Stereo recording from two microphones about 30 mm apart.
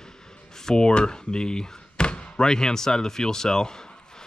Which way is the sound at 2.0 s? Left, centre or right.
Left.